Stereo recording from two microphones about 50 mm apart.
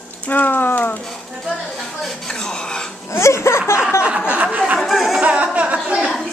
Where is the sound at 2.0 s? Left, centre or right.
Centre.